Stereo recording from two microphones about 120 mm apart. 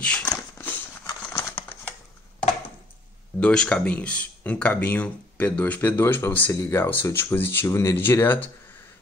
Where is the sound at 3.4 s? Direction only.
10° left (ahead or behind).